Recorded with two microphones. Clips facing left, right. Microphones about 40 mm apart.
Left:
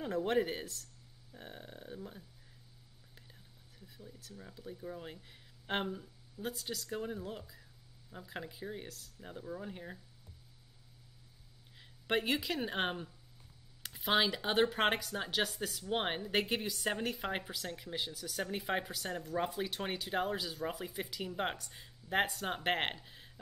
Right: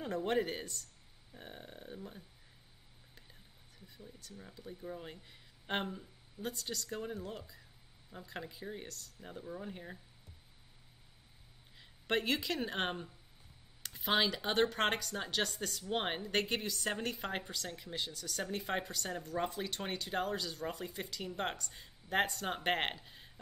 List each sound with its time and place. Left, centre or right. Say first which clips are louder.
0.0 s speech: left 1 dB; centre
11.7 s speech: left 1 dB; centre